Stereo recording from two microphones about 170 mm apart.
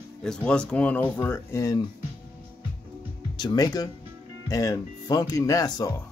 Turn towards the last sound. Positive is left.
turn(degrees=20)  # may be behind; listen again after turning